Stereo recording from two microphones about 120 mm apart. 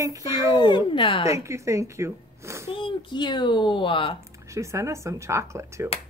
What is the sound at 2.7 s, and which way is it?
Speech, 45° left (ahead or behind).